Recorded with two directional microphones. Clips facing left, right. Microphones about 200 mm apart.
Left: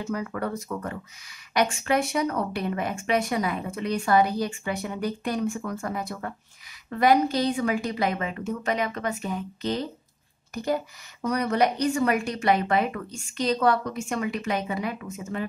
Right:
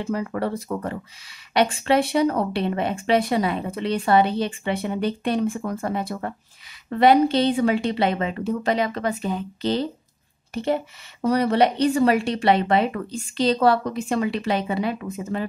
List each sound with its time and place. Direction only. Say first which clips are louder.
0.0 s a woman's voice: right 4 dB; 30° right (ahead or behind)